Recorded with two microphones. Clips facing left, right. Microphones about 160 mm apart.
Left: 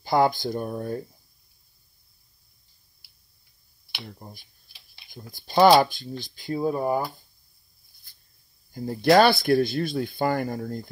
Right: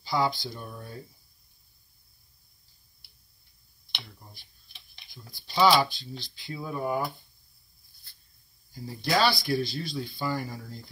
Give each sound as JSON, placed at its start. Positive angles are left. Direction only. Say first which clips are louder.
{"t": 0.0, "sound": "speech", "louder": "left 7 dB", "side_deg": 50}
{"t": 4.2, "sound": "speech", "louder": "left 9 dB", "side_deg": 45}
{"t": 8.7, "sound": "speech", "louder": "left 10 dB", "side_deg": 55}